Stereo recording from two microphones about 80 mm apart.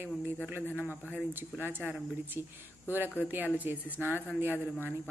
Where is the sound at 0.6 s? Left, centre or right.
Left.